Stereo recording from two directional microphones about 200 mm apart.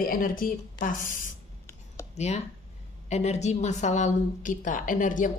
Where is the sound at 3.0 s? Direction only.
35° left (ahead or behind).